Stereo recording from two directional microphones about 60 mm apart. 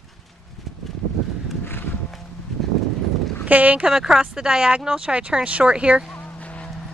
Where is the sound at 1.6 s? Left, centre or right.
Left.